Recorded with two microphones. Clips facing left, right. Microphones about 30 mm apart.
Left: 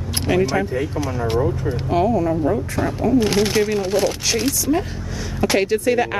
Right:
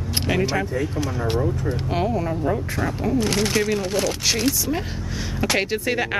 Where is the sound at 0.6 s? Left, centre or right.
Centre.